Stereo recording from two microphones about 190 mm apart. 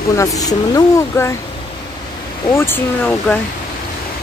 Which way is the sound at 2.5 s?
10° left (ahead or behind).